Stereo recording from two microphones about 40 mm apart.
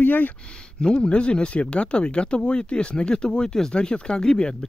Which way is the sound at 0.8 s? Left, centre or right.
Left.